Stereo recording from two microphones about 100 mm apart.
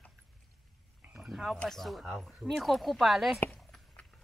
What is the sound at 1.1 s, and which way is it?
Speech, centre (ahead or behind).